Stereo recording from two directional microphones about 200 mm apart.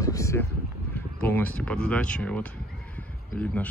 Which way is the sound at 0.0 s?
15° left (ahead or behind).